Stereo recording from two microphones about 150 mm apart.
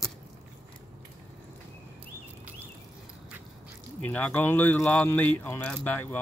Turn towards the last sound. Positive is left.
turn(degrees=10)  # may be behind; listen again after turning